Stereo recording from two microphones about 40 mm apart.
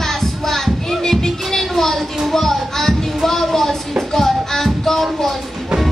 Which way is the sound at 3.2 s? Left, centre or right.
Centre.